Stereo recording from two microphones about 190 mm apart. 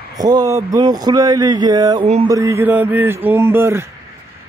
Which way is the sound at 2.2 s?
15° right (ahead or behind).